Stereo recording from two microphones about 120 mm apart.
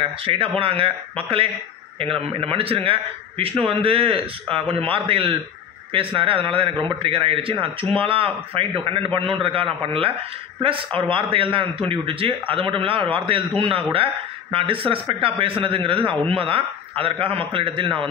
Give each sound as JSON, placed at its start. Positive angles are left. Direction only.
{"t": 0.0, "sound": "a man's voice", "side_deg": -50}
{"t": 2.0, "sound": "a man's voice", "side_deg": -50}